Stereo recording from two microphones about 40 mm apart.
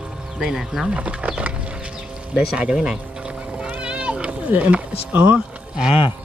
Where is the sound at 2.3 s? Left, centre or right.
Right.